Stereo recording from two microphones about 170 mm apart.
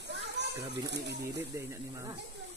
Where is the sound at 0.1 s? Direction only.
85° right.